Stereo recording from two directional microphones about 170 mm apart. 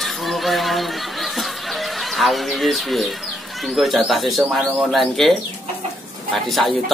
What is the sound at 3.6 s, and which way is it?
Speech, centre (ahead or behind).